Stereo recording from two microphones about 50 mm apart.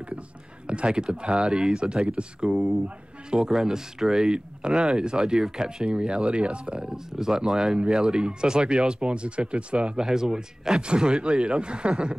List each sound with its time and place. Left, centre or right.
0.7 s speech: right
2.5 s speech: centre
3.3 s speech: centre
10.0 s speech: centre